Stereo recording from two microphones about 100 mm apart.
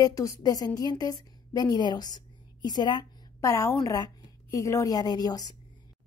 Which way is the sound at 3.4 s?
30° left (ahead or behind).